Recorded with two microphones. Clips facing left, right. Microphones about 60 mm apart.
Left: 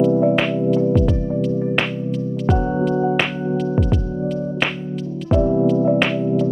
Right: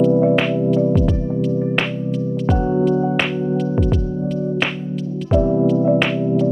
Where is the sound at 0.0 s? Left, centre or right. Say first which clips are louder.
Right 1 dB; centre.